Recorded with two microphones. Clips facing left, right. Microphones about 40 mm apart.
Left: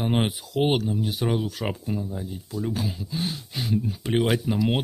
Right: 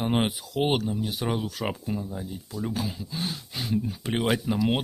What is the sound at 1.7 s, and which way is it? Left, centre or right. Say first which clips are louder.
Speech: left 1 dB; centre.